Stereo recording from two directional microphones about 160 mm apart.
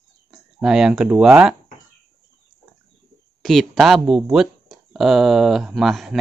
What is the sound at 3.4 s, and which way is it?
Speech, centre (ahead or behind).